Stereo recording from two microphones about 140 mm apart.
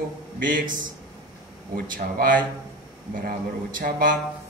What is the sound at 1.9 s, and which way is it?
Speech, 80° right.